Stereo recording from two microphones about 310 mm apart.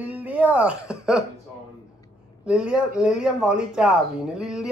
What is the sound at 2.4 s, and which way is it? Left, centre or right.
Speech, centre.